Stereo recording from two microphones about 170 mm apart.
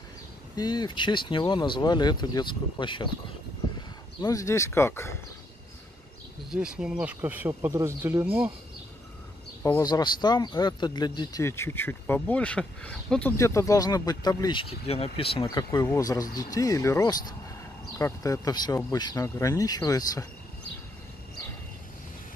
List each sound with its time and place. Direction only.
0.6 s speech: 25° left (ahead or behind)
4.2 s speech: 20° left (ahead or behind)
6.5 s speech: 5° right (ahead or behind)
9.6 s speech: 15° left (ahead or behind)
13.4 s speech: 15° left (ahead or behind)